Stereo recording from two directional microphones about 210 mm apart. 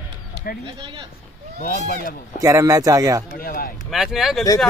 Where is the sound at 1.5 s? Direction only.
40° left (ahead or behind).